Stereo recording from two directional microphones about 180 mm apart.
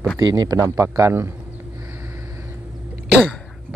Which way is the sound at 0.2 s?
20° right (ahead or behind).